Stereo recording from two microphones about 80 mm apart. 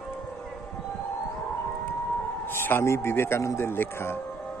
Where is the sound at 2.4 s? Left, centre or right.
Left.